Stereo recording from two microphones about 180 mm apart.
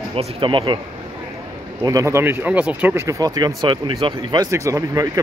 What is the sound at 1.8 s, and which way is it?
Speech, 20° right (ahead or behind).